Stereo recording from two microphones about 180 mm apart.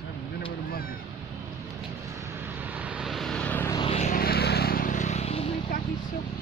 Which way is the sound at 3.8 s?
35° left (ahead or behind).